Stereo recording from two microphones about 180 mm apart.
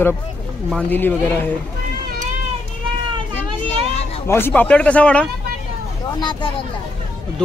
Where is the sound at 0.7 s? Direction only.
5° left (ahead or behind).